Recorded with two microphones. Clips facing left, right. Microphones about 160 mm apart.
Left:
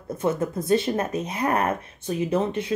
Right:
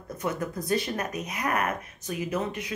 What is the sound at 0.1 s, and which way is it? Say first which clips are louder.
Speech: left 6 dB; 25° left (ahead or behind).